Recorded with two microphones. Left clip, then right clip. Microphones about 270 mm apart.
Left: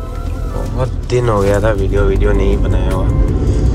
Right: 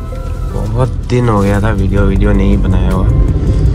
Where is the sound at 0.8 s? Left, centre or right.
Centre.